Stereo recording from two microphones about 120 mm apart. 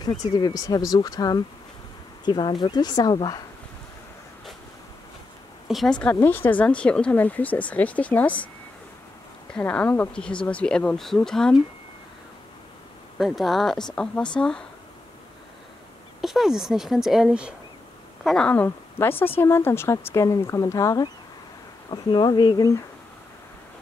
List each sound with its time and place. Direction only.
0.3 s speech: 30° left (ahead or behind)
5.7 s speech: 5° left (ahead or behind)
9.5 s speech: 10° left (ahead or behind)
13.2 s speech: centre (ahead or behind)
16.2 s speech: centre (ahead or behind)
18.2 s speech: 5° left (ahead or behind); by 22.7 s 40° left (ahead or behind)